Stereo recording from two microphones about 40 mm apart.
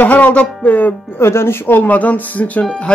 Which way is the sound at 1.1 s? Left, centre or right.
Left.